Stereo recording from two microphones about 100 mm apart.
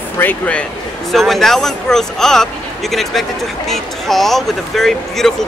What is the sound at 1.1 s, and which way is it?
Speech, centre (ahead or behind).